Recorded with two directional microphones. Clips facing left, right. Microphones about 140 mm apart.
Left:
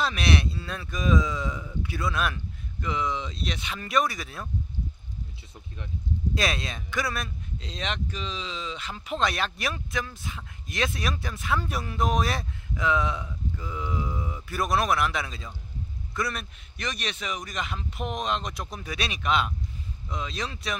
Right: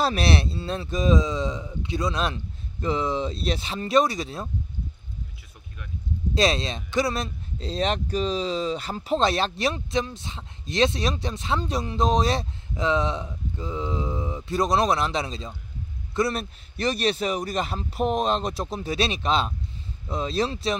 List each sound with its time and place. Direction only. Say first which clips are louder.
0.0 s speech: right 3 dB; 35° right (ahead or behind)
6.3 s speech: right 8 dB; 25° right (ahead or behind)